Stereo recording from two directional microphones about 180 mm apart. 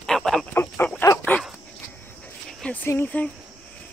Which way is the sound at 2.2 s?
10° left (ahead or behind).